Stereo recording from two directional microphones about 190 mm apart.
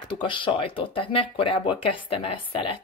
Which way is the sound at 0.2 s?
25° left (ahead or behind).